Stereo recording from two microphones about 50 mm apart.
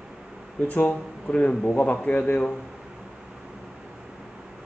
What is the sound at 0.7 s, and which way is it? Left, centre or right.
Speech, left.